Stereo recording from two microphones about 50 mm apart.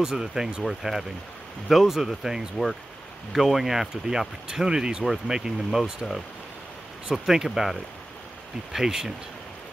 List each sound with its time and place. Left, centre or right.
0.0 s speech: centre
7.1 s speech: centre
8.7 s speech: centre